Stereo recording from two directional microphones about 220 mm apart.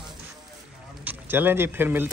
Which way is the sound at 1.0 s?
10° right (ahead or behind).